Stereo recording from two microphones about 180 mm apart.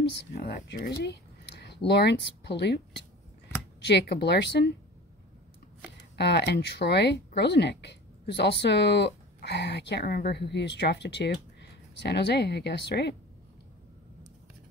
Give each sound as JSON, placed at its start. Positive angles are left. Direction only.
{"t": 0.3, "sound": "speech", "side_deg": 65}
{"t": 1.0, "sound": "a sound", "side_deg": 70}
{"t": 1.9, "sound": "speech", "side_deg": 70}
{"t": 3.8, "sound": "speech", "side_deg": 65}
{"t": 5.9, "sound": "speech", "side_deg": 65}